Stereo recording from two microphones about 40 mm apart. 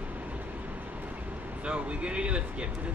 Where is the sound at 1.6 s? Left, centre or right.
Right.